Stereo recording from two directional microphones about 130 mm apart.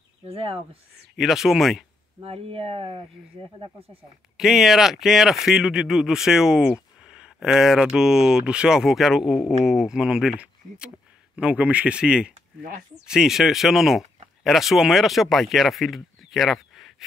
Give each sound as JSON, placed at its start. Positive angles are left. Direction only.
{"t": 0.3, "sound": "speech", "side_deg": -45}
{"t": 1.1, "sound": "speech", "side_deg": -5}
{"t": 2.2, "sound": "speech", "side_deg": -50}
{"t": 4.4, "sound": "speech", "side_deg": -5}
{"t": 12.6, "sound": "speech", "side_deg": -90}
{"t": 13.0, "sound": "speech", "side_deg": -5}